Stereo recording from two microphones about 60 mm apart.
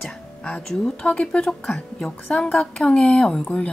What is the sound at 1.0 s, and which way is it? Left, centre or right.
Speech, centre.